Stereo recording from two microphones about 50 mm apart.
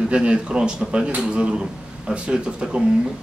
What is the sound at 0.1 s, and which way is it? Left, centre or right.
Speech, right.